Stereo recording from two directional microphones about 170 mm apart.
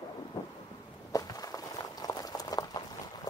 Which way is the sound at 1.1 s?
20° left (ahead or behind).